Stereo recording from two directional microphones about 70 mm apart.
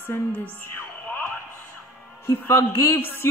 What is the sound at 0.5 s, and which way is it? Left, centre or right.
Music, left.